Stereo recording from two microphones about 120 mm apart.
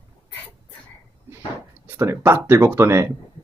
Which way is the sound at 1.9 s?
20° right (ahead or behind).